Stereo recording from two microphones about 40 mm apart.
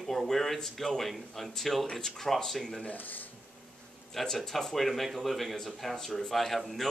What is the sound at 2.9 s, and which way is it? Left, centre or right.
Speech, left.